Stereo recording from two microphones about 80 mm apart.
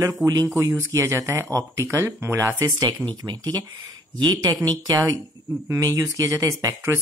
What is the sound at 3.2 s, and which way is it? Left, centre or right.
Speech, right.